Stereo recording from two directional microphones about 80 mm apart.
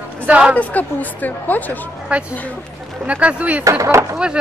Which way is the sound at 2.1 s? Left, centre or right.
Centre.